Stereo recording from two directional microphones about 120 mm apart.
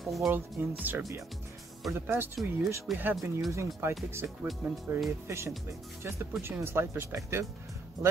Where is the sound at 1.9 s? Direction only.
15° right (ahead or behind).